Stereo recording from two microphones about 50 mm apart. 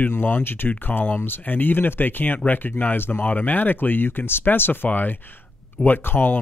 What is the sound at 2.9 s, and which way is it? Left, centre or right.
Speech, left.